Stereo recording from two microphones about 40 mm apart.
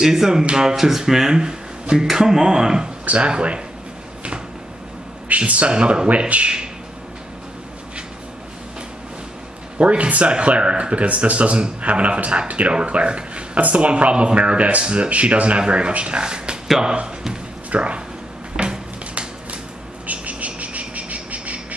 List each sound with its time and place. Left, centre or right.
0.0 s speech: centre
3.1 s speech: right
5.3 s speech: right
6.0 s speech: right
9.8 s speech: right
17.6 s speech: right
18.6 s a sound: right
20.1 s a sound: right